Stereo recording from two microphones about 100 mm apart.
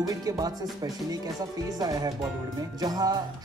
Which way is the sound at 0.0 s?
35° right (ahead or behind).